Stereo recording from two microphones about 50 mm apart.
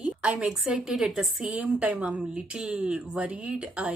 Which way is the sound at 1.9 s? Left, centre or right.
Right.